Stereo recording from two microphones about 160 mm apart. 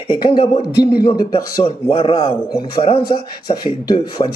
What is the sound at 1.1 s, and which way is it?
Speech, 25° left (ahead or behind).